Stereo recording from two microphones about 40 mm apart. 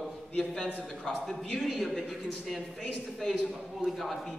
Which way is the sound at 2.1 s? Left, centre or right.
Centre.